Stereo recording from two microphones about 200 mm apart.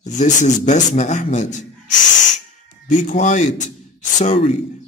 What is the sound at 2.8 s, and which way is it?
A man's voice, 40° left (ahead or behind).